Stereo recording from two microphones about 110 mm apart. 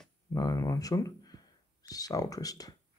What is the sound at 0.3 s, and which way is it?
Speech, 35° left (ahead or behind).